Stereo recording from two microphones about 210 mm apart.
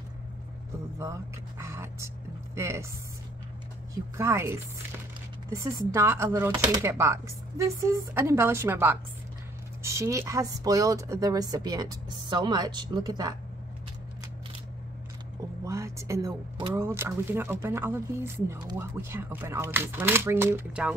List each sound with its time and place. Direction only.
1.6 s dog: 15° right (ahead or behind)
2.5 s speech: 15° right (ahead or behind)
3.9 s speech: 15° right (ahead or behind)
5.9 s speech: 10° right (ahead or behind)
15.6 s speech: 15° right (ahead or behind)